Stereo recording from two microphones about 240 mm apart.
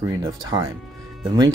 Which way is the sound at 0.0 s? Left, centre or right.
Centre.